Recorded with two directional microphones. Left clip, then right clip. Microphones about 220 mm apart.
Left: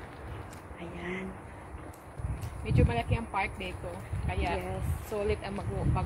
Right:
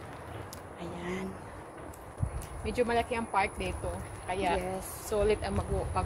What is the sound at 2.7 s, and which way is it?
Speech, 20° right (ahead or behind).